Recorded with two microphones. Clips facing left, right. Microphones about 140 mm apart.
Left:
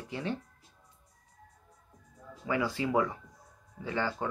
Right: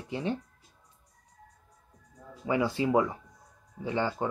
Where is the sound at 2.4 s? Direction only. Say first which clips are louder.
Right 3 dB; 20° right (ahead or behind).